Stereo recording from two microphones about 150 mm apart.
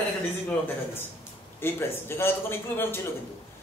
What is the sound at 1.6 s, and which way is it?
A man's voice, 15° left (ahead or behind).